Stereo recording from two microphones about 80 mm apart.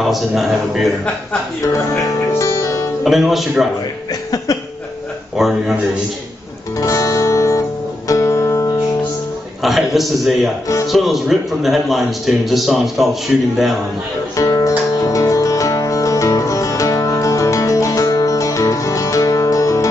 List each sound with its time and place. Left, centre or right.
0.0 s a man's voice: centre
2.3 s music: left
3.0 s a man's voice: centre
4.1 s a sound: left
5.4 s a man's voice: centre
6.8 s music: left
9.6 s a man's voice: centre
14.4 s music: left